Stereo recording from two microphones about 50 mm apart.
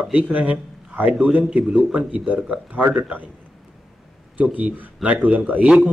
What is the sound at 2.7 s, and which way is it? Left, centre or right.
Speech, right.